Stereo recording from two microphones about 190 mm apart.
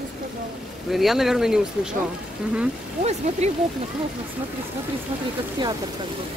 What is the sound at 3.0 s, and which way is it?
Speech, 35° right (ahead or behind).